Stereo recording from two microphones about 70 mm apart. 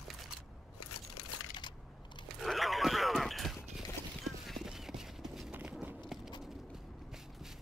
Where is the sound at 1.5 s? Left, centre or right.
Left.